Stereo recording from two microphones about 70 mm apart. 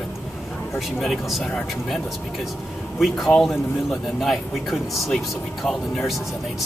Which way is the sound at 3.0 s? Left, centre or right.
Centre.